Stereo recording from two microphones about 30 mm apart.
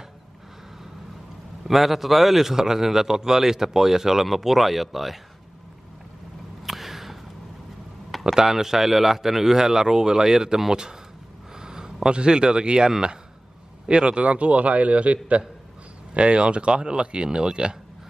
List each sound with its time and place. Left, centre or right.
1.7 s a man's voice: centre
2.5 s speech: centre
6.6 s a sound: centre
8.4 s speech: centre
11.6 s a sound: right
12.1 s speech: right
14.2 s a man's voice: right
16.2 s speech: right